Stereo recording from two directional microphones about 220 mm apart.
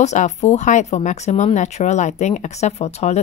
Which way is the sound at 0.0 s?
30° left (ahead or behind).